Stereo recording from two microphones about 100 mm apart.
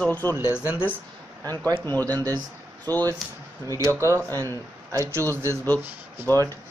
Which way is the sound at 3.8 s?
30° right (ahead or behind).